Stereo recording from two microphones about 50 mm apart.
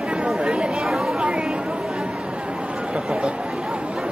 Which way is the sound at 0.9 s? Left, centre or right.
Centre.